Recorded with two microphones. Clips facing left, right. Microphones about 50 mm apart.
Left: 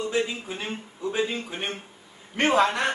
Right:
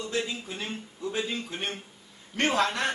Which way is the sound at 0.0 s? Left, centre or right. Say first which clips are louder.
Left 5 dB; centre.